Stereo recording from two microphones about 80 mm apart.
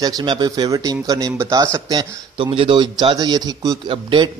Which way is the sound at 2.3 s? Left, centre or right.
Right.